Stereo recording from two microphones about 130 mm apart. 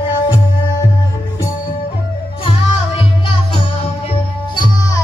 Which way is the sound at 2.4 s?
45° left (ahead or behind).